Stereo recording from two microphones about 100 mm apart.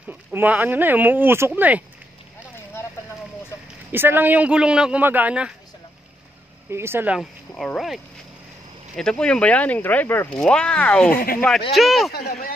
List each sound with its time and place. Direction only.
0.3 s speech: 20° right (ahead or behind)
3.9 s speech: 20° right (ahead or behind)
6.7 s speech: 25° right (ahead or behind)
7.2 s speech: 5° left (ahead or behind)
11.7 s speech: centre (ahead or behind)